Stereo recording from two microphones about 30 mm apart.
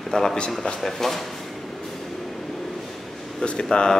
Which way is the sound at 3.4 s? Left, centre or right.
Left.